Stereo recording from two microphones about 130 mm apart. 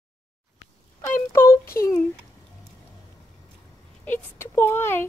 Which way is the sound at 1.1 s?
20° left (ahead or behind).